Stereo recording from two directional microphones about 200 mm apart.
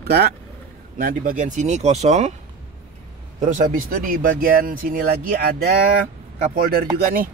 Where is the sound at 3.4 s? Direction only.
40° right (ahead or behind).